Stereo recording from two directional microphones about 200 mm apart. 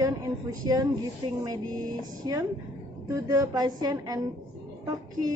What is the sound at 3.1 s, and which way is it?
A woman's voice, 20° right (ahead or behind).